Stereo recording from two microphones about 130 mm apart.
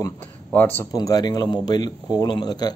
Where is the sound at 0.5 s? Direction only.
15° left (ahead or behind).